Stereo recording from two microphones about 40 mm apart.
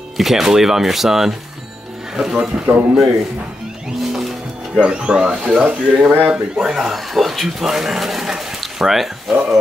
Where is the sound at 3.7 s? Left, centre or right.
Centre.